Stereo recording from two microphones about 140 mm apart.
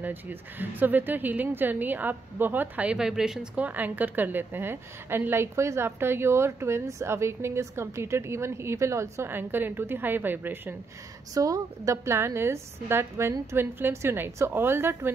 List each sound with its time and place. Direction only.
0.0 s a woman's voice: 15° right (ahead or behind)